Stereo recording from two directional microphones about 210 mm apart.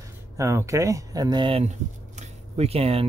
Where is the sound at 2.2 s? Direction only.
30° right (ahead or behind).